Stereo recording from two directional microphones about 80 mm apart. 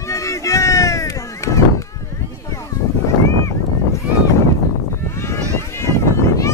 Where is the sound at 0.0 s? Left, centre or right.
Left.